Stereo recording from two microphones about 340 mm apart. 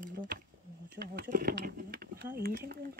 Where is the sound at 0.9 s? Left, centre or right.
Right.